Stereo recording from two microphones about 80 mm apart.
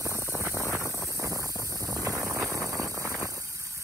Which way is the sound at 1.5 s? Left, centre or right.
Right.